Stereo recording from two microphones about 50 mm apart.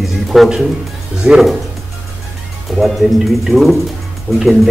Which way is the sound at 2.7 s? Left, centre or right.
Centre.